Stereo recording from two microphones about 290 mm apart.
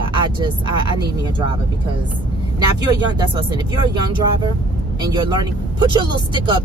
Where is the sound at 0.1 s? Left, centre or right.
Centre.